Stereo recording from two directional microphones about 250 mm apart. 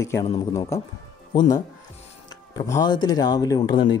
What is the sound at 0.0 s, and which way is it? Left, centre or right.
Speech, centre.